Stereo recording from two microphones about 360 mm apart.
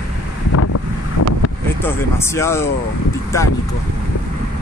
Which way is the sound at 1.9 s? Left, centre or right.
Centre.